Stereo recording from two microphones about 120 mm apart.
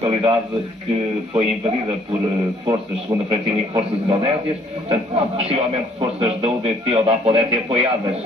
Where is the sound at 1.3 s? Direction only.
50° right (ahead or behind).